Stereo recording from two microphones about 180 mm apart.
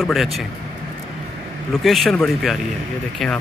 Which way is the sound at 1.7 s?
Centre (ahead or behind).